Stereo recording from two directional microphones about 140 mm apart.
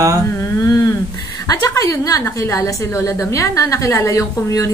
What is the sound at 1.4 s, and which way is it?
A woman's voice, 25° left (ahead or behind).